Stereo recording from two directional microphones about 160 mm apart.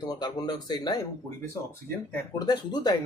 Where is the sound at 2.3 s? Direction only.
25° left (ahead or behind).